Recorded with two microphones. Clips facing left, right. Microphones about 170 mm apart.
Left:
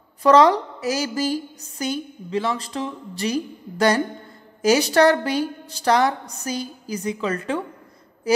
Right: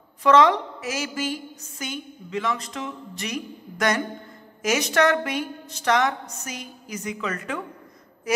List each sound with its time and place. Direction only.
0.2 s a woman's voice: 35° left (ahead or behind)